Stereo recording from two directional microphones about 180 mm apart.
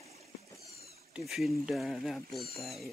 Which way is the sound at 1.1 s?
Centre (ahead or behind).